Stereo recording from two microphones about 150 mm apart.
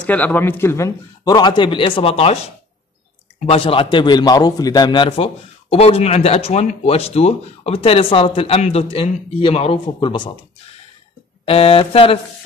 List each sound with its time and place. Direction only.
0.0 s a man's voice: 10° left (ahead or behind); by 2.3 s 40° left (ahead or behind)
3.3 s a man's voice: 40° left (ahead or behind)
11.4 s a man's voice: 40° left (ahead or behind)